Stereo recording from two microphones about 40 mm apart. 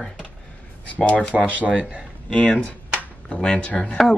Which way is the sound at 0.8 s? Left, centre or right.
Left.